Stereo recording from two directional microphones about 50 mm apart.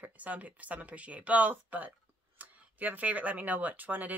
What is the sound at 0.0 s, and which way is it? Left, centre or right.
A woman's voice, right.